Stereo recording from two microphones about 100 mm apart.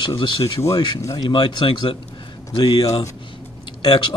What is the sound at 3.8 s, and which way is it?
Speech, 50° left (ahead or behind).